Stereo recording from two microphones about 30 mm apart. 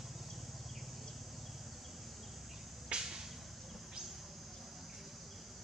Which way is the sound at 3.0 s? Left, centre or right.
Centre.